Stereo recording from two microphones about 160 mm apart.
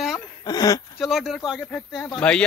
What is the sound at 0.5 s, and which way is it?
Speech, 25° left (ahead or behind).